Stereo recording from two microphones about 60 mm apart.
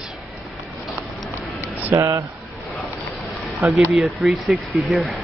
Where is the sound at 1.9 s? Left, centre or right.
Right.